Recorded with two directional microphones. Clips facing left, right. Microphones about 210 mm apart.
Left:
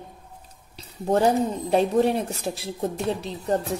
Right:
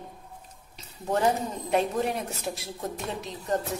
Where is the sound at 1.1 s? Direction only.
35° left (ahead or behind).